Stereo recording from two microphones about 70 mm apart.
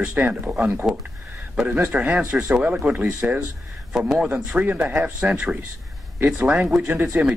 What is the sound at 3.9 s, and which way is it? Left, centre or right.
Speech, centre.